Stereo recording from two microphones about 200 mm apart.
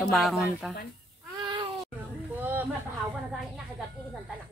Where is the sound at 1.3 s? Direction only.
20° right (ahead or behind).